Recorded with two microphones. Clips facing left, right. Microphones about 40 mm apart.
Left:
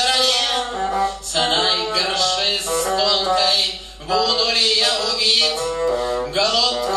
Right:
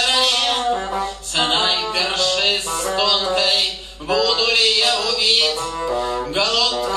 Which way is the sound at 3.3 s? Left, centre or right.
Right.